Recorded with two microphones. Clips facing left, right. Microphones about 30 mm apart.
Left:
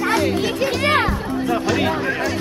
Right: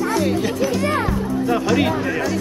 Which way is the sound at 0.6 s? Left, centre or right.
Left.